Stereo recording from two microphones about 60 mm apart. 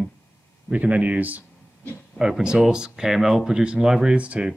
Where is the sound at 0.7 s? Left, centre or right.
Right.